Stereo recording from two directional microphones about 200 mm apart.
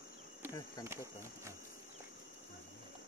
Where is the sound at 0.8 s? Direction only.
15° right (ahead or behind).